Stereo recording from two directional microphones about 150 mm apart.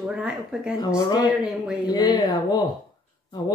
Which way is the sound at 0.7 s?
25° left (ahead or behind).